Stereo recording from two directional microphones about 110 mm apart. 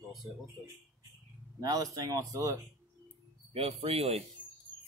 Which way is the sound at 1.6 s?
35° right (ahead or behind).